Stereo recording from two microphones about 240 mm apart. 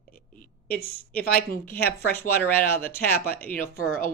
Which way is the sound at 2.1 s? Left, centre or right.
Centre.